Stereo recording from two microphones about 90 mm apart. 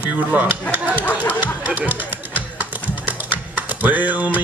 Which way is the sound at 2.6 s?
15° right (ahead or behind).